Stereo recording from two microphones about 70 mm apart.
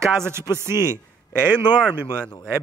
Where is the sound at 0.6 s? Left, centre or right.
Right.